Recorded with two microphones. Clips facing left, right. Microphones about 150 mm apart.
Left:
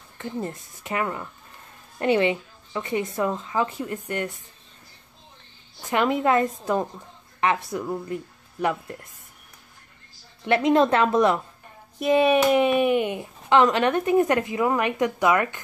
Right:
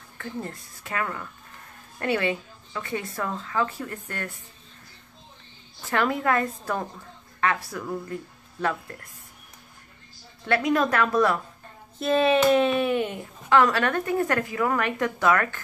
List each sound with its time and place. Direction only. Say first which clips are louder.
0.2 s a woman's voice: left 4 dB; 20° left (ahead or behind)
5.8 s a woman's voice: left 3 dB; 15° left (ahead or behind)
10.4 s a woman's voice: left 4 dB; 25° left (ahead or behind)